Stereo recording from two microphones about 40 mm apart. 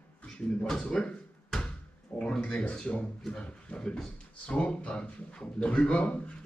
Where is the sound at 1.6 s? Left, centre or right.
Left.